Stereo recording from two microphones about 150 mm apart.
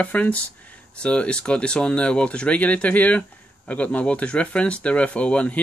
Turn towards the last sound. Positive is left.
turn(degrees=10)  # may be behind; listen again after turning